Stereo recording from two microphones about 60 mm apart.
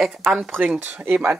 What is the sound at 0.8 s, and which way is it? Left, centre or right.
Speech, right.